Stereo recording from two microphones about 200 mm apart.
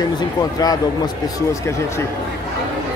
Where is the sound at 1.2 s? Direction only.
15° left (ahead or behind).